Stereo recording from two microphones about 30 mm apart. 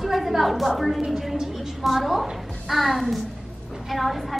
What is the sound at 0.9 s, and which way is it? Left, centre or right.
Speech, centre.